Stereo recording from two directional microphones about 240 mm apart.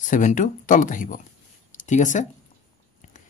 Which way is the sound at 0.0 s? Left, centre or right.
Left.